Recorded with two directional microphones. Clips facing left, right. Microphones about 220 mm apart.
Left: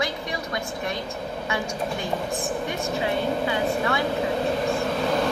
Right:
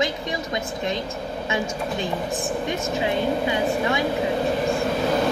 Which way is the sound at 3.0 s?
20° right (ahead or behind).